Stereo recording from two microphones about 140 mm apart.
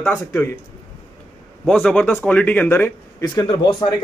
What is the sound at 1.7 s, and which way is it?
Speech, 5° left (ahead or behind).